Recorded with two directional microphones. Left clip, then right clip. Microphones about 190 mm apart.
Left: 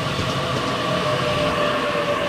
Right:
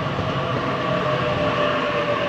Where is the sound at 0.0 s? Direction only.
35° right (ahead or behind).